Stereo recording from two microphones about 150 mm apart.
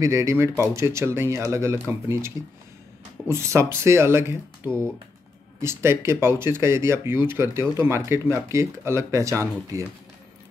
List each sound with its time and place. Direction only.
0.0 s speech: 20° right (ahead or behind)
5.6 s speech: 15° right (ahead or behind)